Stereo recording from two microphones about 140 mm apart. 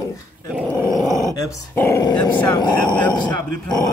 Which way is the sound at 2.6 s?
30° left (ahead or behind).